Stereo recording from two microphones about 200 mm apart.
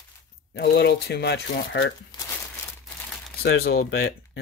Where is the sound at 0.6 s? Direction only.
55° left (ahead or behind).